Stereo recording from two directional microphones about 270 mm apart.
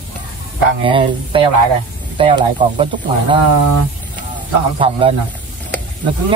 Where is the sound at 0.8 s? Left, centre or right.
Centre.